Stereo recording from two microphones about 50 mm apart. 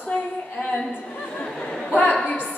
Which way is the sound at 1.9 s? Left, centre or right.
Left.